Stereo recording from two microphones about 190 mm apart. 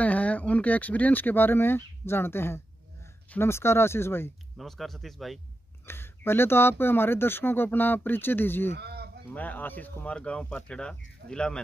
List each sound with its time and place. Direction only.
0.0 s speech: 5° left (ahead or behind)
4.6 s speech: centre (ahead or behind)
5.9 s speech: 10° left (ahead or behind)
8.7 s a sound: 60° right (ahead or behind)
9.3 s speech: 10° left (ahead or behind)